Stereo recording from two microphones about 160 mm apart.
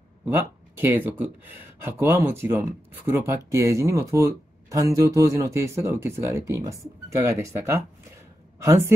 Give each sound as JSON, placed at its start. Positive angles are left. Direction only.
{"t": 0.3, "sound": "speech", "side_deg": -15}